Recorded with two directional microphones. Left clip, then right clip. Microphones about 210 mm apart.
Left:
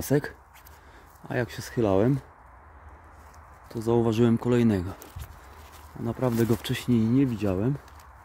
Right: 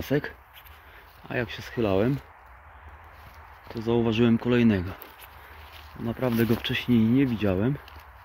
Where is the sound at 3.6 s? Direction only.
35° left (ahead or behind).